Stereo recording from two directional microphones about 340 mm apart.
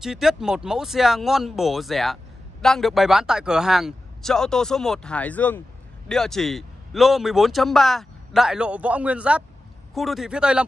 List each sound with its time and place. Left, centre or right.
0.0 s a man's voice: centre